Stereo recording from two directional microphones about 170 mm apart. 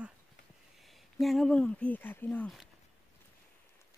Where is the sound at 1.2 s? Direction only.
Centre (ahead or behind).